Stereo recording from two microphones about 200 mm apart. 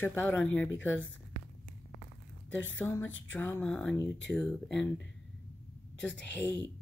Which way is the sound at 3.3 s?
10° left (ahead or behind).